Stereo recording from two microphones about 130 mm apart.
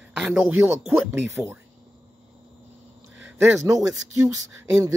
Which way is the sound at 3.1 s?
15° right (ahead or behind).